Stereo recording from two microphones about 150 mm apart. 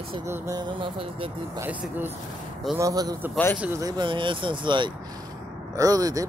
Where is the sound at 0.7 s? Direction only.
35° right (ahead or behind).